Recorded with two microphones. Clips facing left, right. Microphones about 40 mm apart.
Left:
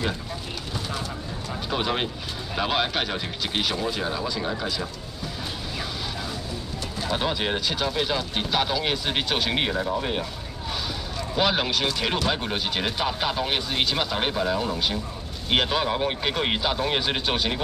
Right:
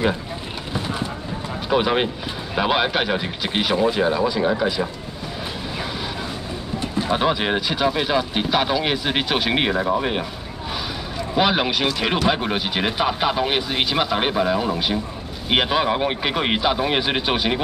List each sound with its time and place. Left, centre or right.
0.7 s clip-clop: right
1.7 s speech: centre
6.8 s speech: right
11.3 s speech: centre